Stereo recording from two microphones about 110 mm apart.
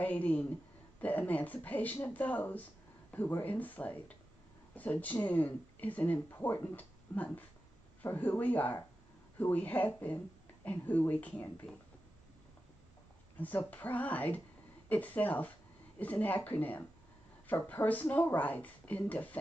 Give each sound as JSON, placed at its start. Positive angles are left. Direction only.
{"t": 0.0, "sound": "a woman's voice", "side_deg": 15}
{"t": 13.4, "sound": "speech", "side_deg": 15}